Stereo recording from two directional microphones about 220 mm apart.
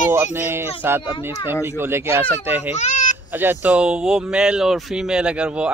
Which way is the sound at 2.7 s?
30° left (ahead or behind).